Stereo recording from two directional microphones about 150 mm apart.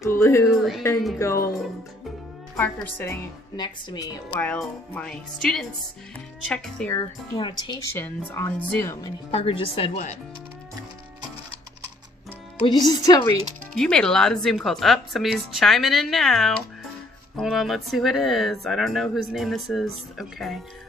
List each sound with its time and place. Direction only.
0.0 s speech: 20° left (ahead or behind)
2.5 s speech: 15° left (ahead or behind)
3.5 s speech: 30° left (ahead or behind)
4.3 s speech: 10° left (ahead or behind)
7.0 s speech: 30° left (ahead or behind)
8.3 s speech: 15° left (ahead or behind)
9.3 s speech: 40° left (ahead or behind)
12.6 s speech: 25° left (ahead or behind)
13.7 s a woman's voice: 5° left (ahead or behind)